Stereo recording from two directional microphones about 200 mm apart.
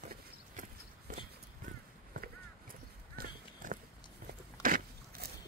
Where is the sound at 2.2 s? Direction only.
45° right (ahead or behind).